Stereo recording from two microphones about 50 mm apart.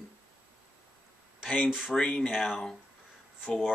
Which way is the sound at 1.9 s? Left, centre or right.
Left.